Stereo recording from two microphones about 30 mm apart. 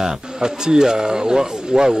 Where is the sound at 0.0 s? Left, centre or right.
Right.